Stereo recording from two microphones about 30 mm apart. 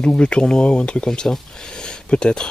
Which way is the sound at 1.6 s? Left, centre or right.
Left.